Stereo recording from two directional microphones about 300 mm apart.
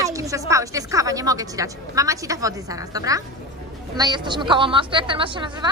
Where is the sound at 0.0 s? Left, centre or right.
Centre.